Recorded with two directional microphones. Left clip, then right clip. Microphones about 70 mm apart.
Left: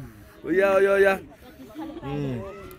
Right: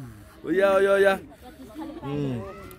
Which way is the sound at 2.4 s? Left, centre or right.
Centre.